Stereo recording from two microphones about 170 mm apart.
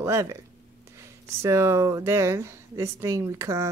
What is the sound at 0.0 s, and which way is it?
Speech, 15° right (ahead or behind).